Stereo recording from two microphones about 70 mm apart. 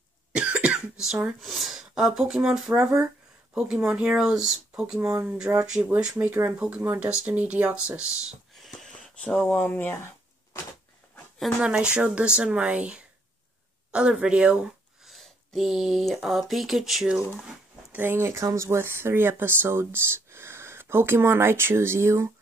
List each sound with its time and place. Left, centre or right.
0.3 s cough: centre
1.0 s speech: centre
1.4 s speech: centre
4.9 s speech: right
5.5 s speech: right
6.6 s speech: centre
9.1 s speech: centre
11.6 s speech: centre
15.0 s a sound: centre
16.2 s speech: centre
17.9 s speech: right
18.4 s speech: right